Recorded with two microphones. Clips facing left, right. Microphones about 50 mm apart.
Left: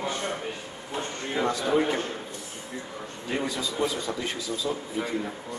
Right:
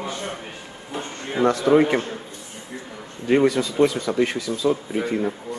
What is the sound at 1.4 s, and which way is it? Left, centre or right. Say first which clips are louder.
Speech: right 8 dB; right.